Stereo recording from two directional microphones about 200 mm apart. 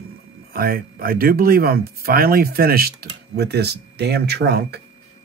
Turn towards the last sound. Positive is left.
turn(degrees=-55)  # may be behind; listen again after turning